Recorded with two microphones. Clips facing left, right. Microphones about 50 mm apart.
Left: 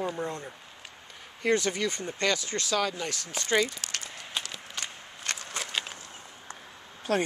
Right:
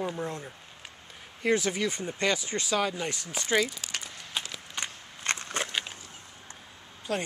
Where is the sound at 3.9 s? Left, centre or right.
Centre.